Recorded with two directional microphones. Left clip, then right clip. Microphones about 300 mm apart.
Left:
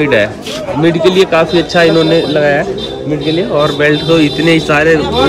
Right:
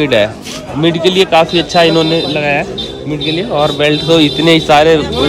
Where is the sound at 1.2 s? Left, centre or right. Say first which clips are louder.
Even; centre.